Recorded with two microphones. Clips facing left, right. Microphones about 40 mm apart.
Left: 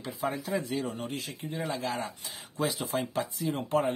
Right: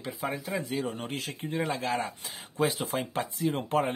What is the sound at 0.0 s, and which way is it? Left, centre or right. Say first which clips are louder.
Speech: left 1 dB; centre.